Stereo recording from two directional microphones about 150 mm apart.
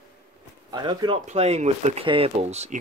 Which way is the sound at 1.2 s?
50° right (ahead or behind).